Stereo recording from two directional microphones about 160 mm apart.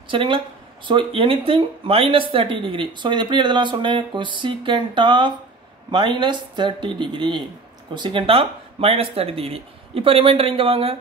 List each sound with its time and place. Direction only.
0.1 s speech: 30° right (ahead or behind)